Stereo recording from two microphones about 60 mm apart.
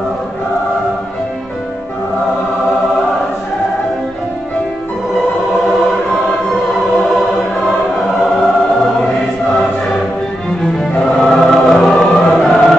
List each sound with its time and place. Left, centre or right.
10.6 s music: centre
11.9 s choir: centre
12.3 s music: centre